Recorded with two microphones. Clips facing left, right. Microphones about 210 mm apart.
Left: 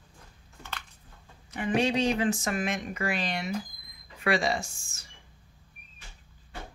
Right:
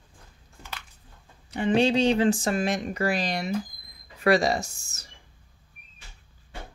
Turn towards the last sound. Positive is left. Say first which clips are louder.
# right 3 dB
turn(degrees=-40)  # may be behind; listen again after turning